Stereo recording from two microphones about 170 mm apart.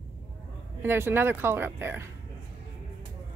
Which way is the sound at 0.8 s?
15° right (ahead or behind).